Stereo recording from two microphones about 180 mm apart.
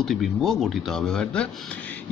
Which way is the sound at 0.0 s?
Centre (ahead or behind).